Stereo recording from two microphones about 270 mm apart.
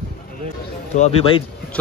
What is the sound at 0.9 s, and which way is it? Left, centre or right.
Speech, left.